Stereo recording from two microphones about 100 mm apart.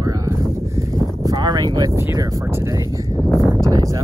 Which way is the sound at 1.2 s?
40° right (ahead or behind).